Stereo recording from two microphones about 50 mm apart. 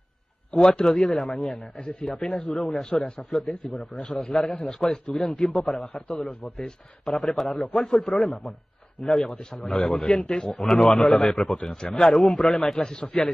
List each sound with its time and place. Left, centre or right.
0.5 s a man's voice: centre
1.1 s a man's voice: centre
1.5 s a man's voice: left
2.5 s a man's voice: centre
6.0 s a man's voice: left
7.1 s a man's voice: centre
11.7 s a man's voice: centre
12.1 s a man's voice: centre